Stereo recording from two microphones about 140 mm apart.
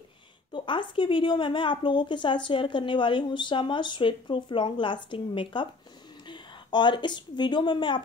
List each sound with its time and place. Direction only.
0.5 s a woman's voice: 35° left (ahead or behind)